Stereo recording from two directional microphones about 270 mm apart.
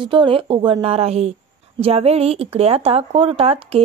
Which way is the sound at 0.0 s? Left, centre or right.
Centre.